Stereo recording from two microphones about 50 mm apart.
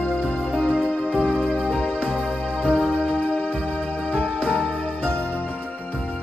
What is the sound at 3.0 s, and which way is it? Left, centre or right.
Music, centre.